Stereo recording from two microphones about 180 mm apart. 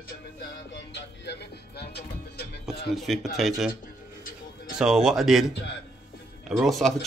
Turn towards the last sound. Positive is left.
turn(degrees=0)  # may be behind; listen again after turning